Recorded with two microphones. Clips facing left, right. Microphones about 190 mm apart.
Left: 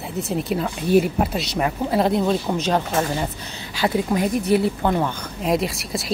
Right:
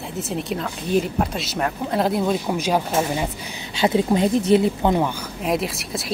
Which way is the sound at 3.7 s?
25° right (ahead or behind).